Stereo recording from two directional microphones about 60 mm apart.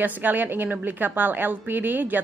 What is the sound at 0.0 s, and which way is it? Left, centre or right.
A woman's voice, right.